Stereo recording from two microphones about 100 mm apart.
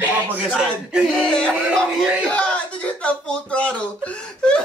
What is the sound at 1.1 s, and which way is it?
Music, 10° left (ahead or behind).